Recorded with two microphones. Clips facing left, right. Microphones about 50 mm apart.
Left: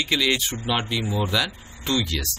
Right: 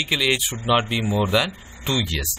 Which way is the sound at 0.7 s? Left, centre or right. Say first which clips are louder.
Right 4 dB; right.